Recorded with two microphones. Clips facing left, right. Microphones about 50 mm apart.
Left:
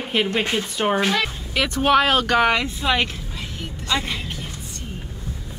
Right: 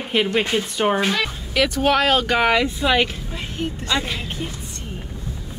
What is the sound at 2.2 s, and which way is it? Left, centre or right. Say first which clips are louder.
Speech: even; centre.